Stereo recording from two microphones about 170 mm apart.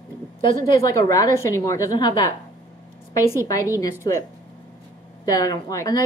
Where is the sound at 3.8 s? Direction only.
20° left (ahead or behind).